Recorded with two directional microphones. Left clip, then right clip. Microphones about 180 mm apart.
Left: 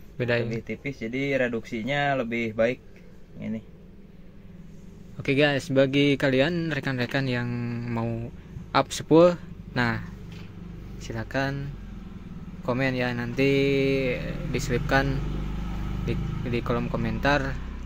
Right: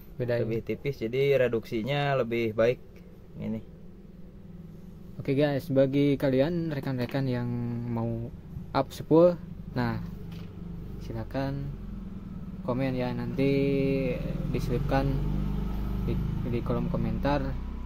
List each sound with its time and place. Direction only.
0.2 s speech: centre (ahead or behind)
0.7 s speech: 80° right
3.3 s speech: 65° right (ahead or behind)
5.2 s a man's voice: 5° right (ahead or behind)
11.0 s speech: 10° left (ahead or behind)
12.6 s speech: 5° left (ahead or behind)
16.1 s speech: 5° left (ahead or behind)